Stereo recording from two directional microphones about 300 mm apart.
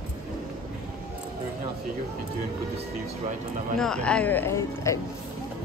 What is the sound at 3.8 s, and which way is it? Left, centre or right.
Speech, centre.